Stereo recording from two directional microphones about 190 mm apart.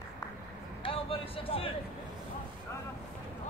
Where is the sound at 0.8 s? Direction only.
30° left (ahead or behind).